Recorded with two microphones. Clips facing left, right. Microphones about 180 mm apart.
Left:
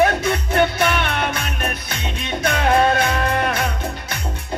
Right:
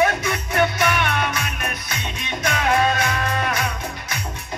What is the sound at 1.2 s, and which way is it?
Music, 60° left (ahead or behind).